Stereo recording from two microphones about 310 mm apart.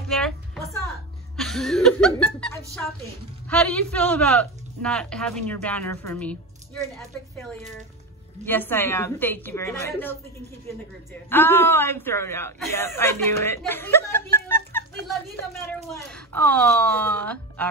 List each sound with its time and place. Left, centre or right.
0.1 s a sound: centre
1.3 s speech: centre
8.5 s a woman's voice: centre
11.2 s a woman's voice: centre